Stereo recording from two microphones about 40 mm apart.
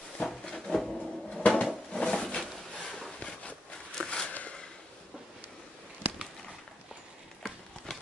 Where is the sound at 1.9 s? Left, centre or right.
Centre.